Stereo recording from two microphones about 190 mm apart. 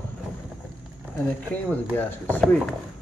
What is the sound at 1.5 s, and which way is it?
Speech, 10° left (ahead or behind).